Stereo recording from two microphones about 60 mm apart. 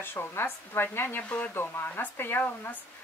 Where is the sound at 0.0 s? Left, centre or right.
Left.